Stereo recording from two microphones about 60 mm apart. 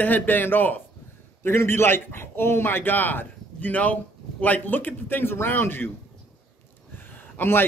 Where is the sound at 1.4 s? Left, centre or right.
Left.